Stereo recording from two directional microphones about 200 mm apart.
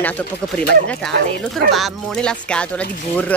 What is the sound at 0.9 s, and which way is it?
Speech, centre (ahead or behind).